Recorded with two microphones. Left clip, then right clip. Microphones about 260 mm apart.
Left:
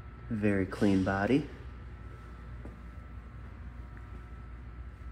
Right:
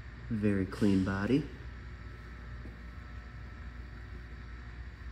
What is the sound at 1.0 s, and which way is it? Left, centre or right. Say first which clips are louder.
Speech: left 5 dB; left.